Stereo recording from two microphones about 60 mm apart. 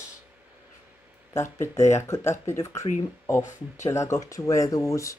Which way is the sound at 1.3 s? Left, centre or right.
Left.